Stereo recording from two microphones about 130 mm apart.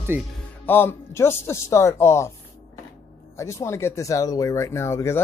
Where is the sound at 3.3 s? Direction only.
20° left (ahead or behind).